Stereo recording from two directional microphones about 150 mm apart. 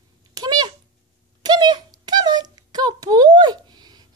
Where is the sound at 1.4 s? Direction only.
30° right (ahead or behind).